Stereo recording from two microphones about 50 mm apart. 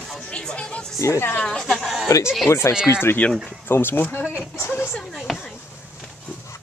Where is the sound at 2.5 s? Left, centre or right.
Left.